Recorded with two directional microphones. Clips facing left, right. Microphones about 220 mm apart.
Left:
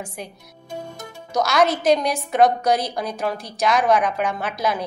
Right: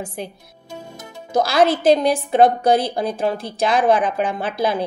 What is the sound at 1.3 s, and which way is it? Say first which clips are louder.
A woman's voice: right 3 dB; 30° right (ahead or behind).